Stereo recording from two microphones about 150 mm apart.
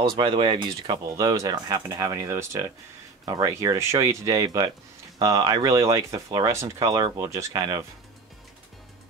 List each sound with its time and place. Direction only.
0.0 s speech: 35° right (ahead or behind)